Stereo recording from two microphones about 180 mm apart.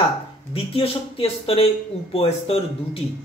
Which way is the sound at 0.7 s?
30° left (ahead or behind).